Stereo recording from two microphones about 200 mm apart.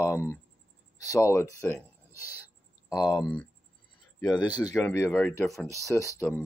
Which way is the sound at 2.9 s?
20° left (ahead or behind).